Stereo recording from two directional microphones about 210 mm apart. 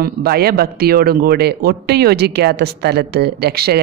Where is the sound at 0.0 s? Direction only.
45° right (ahead or behind).